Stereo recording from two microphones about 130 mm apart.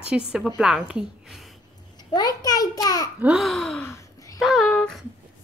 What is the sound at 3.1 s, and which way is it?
Babbling, 5° right (ahead or behind).